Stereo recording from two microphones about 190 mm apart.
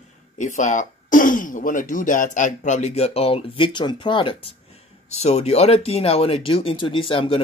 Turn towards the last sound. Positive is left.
turn(degrees=30)  # may be behind; listen again after turning